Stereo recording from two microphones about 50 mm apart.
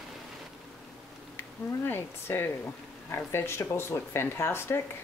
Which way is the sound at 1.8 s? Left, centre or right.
Left.